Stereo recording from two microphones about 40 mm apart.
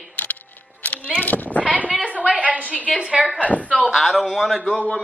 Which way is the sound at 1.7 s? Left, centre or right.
Right.